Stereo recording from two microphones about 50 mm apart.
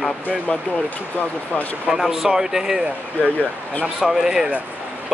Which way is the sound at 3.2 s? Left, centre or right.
Left.